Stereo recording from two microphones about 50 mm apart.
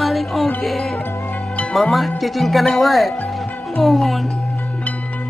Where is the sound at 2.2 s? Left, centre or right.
Centre.